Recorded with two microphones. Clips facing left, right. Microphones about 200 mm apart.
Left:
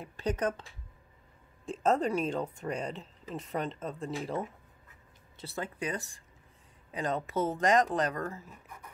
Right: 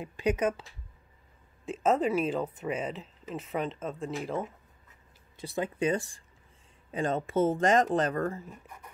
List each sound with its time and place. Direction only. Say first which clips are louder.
0.0 s speech: right 4 dB; 10° right (ahead or behind)
1.7 s speech: right 2 dB; 5° right (ahead or behind)
5.4 s speech: right 7 dB; 15° right (ahead or behind)